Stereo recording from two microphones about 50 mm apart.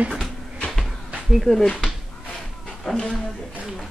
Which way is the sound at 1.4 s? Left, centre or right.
Centre.